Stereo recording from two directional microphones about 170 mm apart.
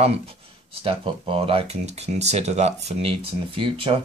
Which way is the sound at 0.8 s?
30° right (ahead or behind).